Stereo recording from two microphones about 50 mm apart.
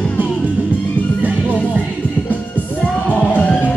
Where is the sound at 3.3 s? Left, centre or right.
Left.